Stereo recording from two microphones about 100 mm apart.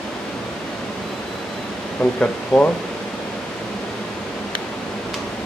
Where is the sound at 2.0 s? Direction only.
15° left (ahead or behind).